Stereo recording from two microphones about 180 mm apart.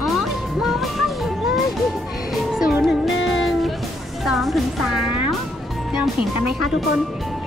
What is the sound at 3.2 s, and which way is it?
Music, 90° left.